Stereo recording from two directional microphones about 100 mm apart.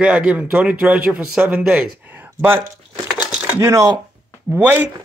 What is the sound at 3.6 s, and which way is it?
Speech, 35° right (ahead or behind).